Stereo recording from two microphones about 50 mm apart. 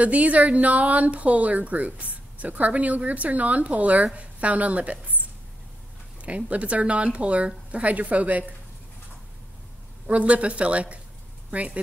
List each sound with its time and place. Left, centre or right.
0.0 s speech: right
6.2 s speech: right
10.0 s speech: right